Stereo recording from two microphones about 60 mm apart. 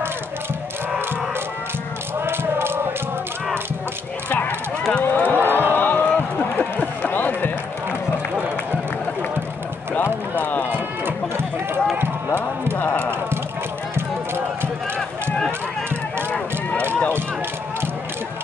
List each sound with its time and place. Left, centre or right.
2.2 s a sound: right
4.3 s clip-clop: left
5.0 s run: left
5.4 s run: right
5.7 s run: left
10.4 s run: left
10.7 s run: right
12.7 s music: left
13.9 s run: right
15.0 s run: centre